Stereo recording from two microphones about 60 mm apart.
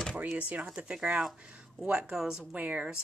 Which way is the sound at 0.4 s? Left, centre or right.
Right.